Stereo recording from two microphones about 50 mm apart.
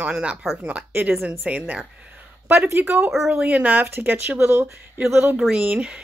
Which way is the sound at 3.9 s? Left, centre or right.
Right.